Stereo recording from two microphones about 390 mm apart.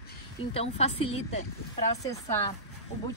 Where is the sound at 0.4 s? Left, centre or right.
Centre.